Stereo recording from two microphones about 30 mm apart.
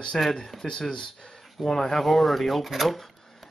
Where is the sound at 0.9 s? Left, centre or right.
Left.